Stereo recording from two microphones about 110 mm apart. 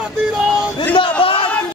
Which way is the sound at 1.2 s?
55° left (ahead or behind).